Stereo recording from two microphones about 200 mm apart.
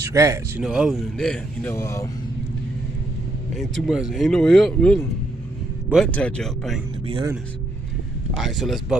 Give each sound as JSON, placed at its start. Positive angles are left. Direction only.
{"t": 0.0, "sound": "speech", "side_deg": -15}
{"t": 0.7, "sound": "speech", "side_deg": -5}
{"t": 3.5, "sound": "speech", "side_deg": 0}
{"t": 6.1, "sound": "speech", "side_deg": 5}
{"t": 7.1, "sound": "speech", "side_deg": -25}
{"t": 8.4, "sound": "speech", "side_deg": 0}